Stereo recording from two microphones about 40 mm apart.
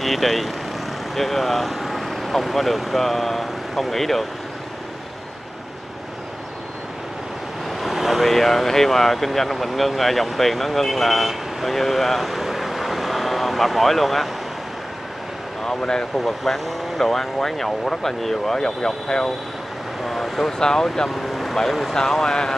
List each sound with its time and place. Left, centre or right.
0.0 s speech: centre
7.8 s vehicle: centre
8.3 s speech: centre
15.6 s speech: centre
16.3 s speech: centre
21.1 s speech: centre
21.9 s speech: centre